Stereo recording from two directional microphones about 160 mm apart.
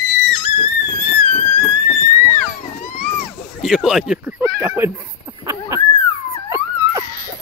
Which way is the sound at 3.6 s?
Centre (ahead or behind).